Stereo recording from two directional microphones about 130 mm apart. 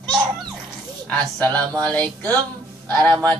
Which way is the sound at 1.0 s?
10° left (ahead or behind).